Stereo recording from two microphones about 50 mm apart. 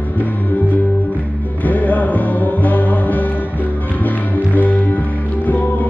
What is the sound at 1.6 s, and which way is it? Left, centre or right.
Music, left.